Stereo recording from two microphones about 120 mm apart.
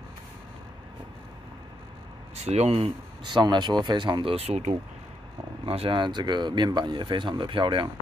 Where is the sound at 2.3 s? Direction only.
65° right (ahead or behind); by 4.3 s 40° right (ahead or behind).